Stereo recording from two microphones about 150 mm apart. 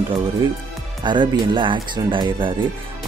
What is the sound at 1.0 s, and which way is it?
Speech, 35° right (ahead or behind).